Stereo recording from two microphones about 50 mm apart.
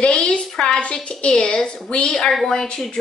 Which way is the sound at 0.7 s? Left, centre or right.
Left.